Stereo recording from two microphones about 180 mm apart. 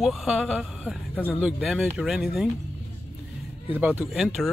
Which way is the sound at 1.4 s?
5° right (ahead or behind).